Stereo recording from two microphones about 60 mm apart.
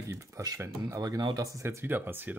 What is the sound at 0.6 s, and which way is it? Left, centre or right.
Speech, right.